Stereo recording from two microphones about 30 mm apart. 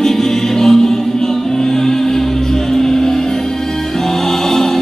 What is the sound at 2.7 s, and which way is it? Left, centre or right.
Music, centre.